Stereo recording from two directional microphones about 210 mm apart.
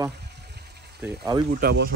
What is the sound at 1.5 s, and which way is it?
Speech, 45° right (ahead or behind).